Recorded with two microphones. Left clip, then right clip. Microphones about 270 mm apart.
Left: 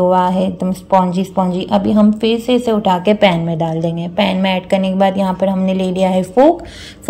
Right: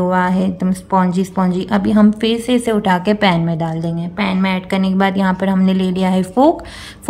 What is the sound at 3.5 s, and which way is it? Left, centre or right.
Speech, right.